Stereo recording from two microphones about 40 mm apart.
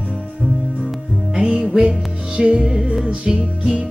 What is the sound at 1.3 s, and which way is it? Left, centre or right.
Music, right.